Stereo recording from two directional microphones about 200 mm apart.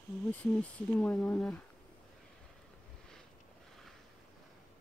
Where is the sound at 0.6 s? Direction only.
5° left (ahead or behind).